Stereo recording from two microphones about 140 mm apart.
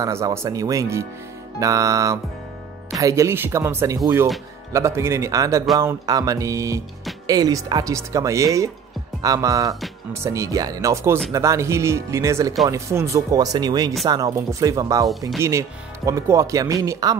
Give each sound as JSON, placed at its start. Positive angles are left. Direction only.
{"t": 0.0, "sound": "speech", "side_deg": -20}
{"t": 16.1, "sound": "speech", "side_deg": -20}